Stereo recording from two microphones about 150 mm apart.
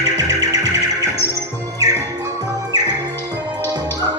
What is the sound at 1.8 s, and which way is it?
Music, 25° right (ahead or behind).